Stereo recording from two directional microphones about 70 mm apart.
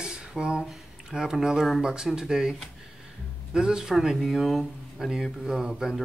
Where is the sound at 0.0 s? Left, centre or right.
Centre.